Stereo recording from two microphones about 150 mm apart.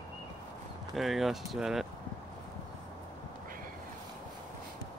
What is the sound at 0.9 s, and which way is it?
Speech, centre (ahead or behind).